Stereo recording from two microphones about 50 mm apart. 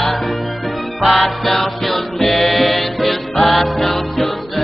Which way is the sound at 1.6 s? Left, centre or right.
Centre.